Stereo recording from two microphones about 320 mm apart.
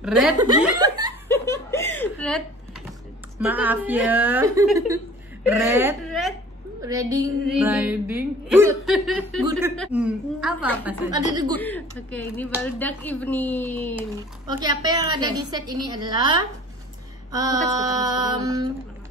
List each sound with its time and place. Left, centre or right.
0.0 s speech: centre
1.3 s laughter: centre
3.3 s a woman's voice: centre
11.5 s a woman's voice: centre
14.6 s a woman's voice: centre